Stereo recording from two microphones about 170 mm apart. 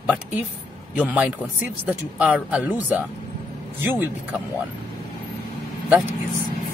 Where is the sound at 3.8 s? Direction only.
10° right (ahead or behind).